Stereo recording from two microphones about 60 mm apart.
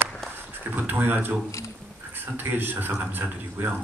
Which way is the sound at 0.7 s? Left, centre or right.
Right.